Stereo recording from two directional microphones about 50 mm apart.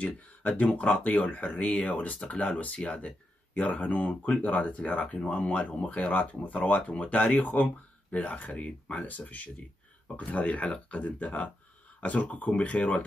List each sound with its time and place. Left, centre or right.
0.0 s speech: left